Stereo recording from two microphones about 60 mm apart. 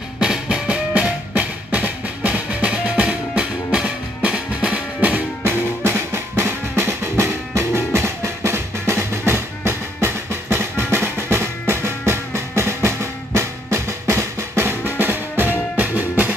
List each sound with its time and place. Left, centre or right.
0.2 s music: centre
5.4 s drum: right
12.1 s music: right